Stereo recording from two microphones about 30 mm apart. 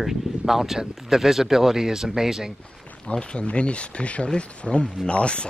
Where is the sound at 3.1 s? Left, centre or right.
Left.